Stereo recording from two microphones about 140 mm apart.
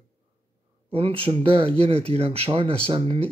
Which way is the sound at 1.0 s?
40° right (ahead or behind).